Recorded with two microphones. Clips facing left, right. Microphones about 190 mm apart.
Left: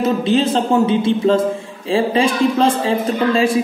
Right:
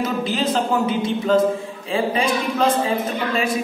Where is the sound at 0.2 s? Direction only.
30° left (ahead or behind).